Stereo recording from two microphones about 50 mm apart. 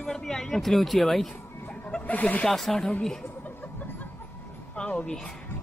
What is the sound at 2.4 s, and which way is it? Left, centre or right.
Speech, centre.